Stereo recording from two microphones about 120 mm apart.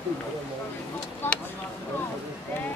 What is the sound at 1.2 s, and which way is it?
Speech, 20° left (ahead or behind).